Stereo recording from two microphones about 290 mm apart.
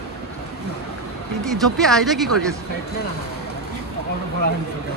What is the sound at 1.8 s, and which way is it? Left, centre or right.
Speech, centre.